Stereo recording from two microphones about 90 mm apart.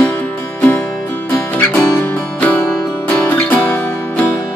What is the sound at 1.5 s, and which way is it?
Music, 15° left (ahead or behind).